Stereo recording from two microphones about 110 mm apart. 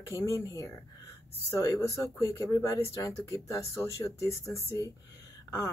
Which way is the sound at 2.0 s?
30° left (ahead or behind).